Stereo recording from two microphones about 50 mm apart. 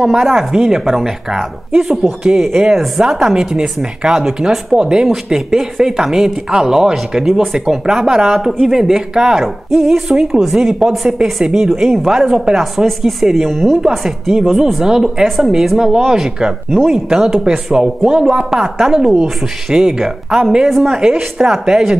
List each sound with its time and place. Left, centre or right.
0.0 s speech: centre
4.7 s speech: centre
5.0 s speech: centre
13.7 s speech: centre
15.2 s speech: centre
16.7 s speech: centre
17.1 s speech: centre